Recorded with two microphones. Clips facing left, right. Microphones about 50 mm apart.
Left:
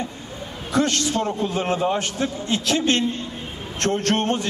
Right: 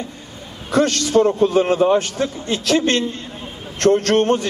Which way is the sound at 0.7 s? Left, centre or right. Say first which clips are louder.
Right 4 dB; right.